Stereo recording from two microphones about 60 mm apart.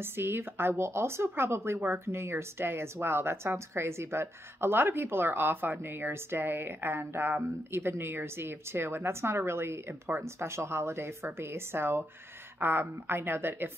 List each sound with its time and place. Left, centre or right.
0.0 s a woman's voice: right